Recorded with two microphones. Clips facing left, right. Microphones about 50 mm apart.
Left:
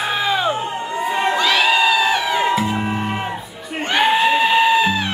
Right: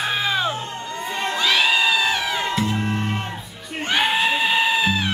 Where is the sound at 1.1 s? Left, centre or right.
Centre.